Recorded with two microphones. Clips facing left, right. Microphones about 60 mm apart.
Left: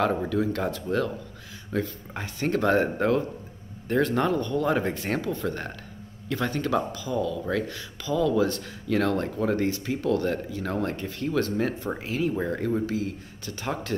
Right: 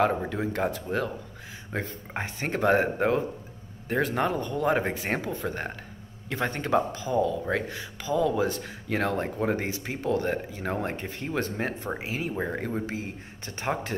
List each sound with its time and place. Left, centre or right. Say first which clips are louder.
0.0 s speech: left 1 dB; centre
1.7 s speech: left 4 dB; right
12.9 s speech: left 5 dB; right